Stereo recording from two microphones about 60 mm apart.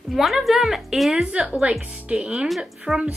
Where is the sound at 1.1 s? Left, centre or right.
Centre.